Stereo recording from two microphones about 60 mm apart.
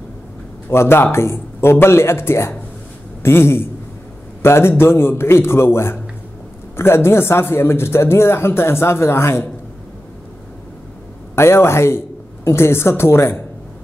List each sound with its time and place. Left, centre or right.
0.7 s a man's voice: left
11.3 s speech: left